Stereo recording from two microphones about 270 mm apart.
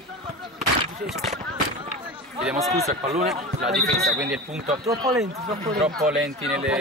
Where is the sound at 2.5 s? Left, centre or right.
Centre.